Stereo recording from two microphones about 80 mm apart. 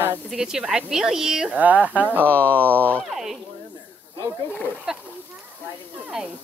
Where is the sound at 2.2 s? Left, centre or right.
Centre.